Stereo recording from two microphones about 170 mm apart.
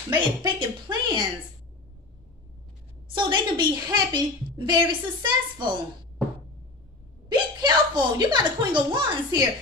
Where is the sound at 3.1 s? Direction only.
25° right (ahead or behind).